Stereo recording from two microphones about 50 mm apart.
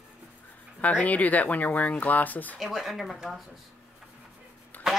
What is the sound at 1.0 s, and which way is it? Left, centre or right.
Speech, left.